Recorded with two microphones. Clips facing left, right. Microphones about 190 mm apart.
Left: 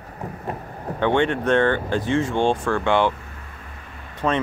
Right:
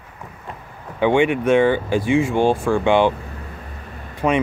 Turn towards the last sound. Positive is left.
turn(degrees=-10)  # may be behind; listen again after turning